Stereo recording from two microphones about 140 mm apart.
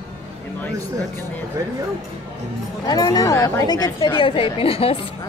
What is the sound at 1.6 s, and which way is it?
Speech, 25° right (ahead or behind).